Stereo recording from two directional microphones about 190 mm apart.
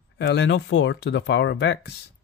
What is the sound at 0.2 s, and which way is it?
Speech, 65° left (ahead or behind).